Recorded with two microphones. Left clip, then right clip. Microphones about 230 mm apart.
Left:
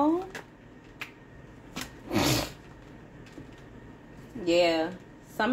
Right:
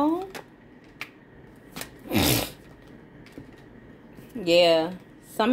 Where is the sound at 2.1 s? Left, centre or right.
Right.